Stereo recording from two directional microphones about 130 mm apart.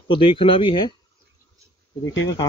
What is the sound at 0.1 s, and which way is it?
Speech, 40° left (ahead or behind).